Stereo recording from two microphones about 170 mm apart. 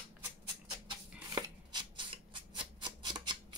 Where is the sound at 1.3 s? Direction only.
25° right (ahead or behind).